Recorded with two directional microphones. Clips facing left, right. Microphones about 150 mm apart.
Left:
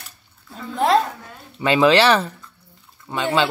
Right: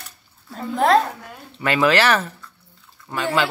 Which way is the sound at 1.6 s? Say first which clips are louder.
Left 3 dB; 25° left (ahead or behind).